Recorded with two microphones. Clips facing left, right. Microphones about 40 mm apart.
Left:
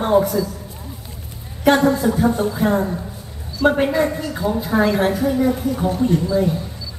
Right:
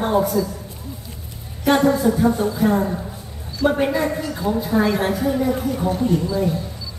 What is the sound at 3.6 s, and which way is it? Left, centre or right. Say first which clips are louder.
Speech: left 2 dB; left.